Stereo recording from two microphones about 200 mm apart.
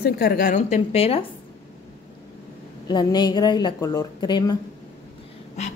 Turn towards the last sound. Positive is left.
turn(degrees=35)  # may be behind; listen again after turning